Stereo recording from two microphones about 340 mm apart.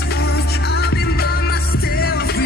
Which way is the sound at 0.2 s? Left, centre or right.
Left.